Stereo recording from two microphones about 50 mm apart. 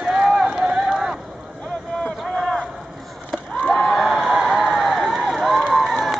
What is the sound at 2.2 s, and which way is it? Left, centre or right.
Run, centre.